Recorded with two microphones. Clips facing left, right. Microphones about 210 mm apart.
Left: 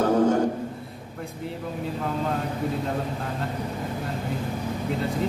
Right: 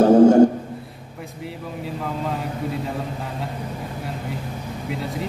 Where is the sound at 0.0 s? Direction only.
45° right (ahead or behind).